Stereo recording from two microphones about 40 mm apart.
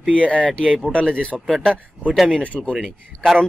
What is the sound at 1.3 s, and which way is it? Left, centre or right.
Speech, centre.